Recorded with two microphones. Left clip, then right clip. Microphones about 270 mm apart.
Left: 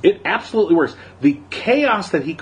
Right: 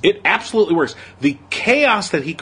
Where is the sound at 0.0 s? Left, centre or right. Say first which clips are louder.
Right 1 dB; right.